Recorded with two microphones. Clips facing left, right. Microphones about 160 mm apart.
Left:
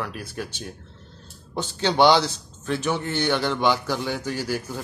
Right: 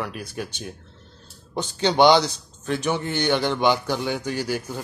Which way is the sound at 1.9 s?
15° right (ahead or behind).